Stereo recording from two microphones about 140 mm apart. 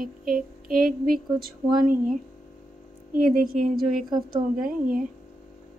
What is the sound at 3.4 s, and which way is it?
A woman's voice, 80° right.